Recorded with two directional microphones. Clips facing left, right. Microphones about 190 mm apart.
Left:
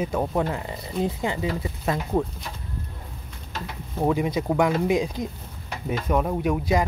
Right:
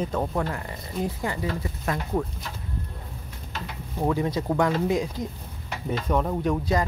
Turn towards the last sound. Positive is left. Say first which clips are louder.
# left 2 dB
turn(degrees=10)  # may be behind; listen again after turning